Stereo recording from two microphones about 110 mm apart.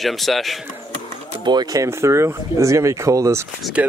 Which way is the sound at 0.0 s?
Centre (ahead or behind).